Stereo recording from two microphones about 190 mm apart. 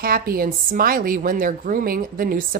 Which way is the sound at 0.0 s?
50° right (ahead or behind).